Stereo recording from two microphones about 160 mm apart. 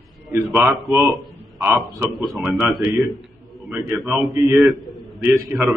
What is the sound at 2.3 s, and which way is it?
A man's voice, 5° right (ahead or behind).